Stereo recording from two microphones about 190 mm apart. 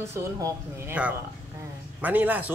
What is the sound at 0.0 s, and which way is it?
A woman's voice, 15° right (ahead or behind).